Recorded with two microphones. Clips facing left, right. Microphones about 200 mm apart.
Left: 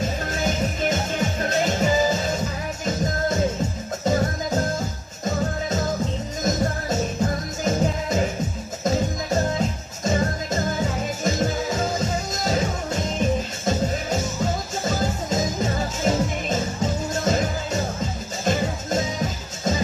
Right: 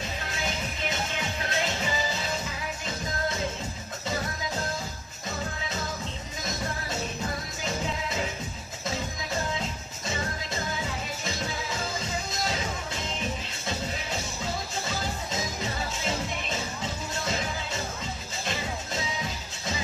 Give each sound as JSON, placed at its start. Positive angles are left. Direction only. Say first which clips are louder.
{"t": 0.0, "sound": "music", "louder": "left 9 dB", "side_deg": 45}